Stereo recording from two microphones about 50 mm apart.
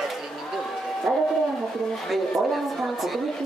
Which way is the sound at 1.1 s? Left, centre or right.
Right.